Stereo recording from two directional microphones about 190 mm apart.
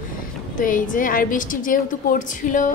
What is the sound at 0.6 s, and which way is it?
A woman's voice, 45° left (ahead or behind).